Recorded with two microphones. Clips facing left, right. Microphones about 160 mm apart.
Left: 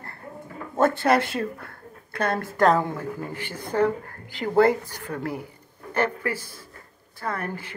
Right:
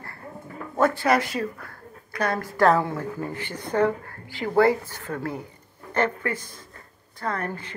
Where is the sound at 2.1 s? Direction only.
25° left (ahead or behind).